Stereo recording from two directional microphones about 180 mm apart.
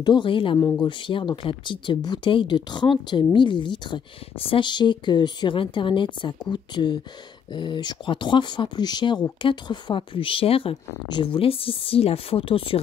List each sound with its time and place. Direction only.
0.0 s speech: 25° left (ahead or behind)
0.6 s speech: 10° left (ahead or behind)
0.8 s speech: 25° left (ahead or behind)